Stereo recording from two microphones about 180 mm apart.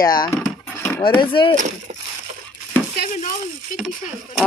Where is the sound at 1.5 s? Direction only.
45° right (ahead or behind).